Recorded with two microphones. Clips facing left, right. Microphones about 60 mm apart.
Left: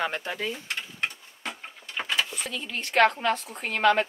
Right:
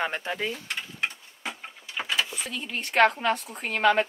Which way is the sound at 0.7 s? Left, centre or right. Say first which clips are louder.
Even; centre.